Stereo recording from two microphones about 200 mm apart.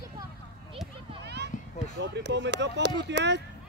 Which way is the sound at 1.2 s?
55° right (ahead or behind).